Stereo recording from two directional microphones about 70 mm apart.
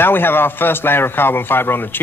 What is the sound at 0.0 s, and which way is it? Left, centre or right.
A man's voice, left.